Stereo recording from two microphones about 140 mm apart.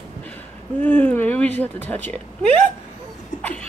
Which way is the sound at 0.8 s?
10° left (ahead or behind).